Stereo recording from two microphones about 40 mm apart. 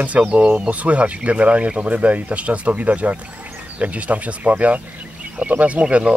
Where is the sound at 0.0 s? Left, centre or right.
Right.